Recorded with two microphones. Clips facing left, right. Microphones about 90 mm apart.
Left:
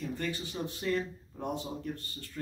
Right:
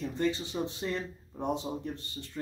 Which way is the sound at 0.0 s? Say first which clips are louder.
Right 5 dB; 20° right (ahead or behind).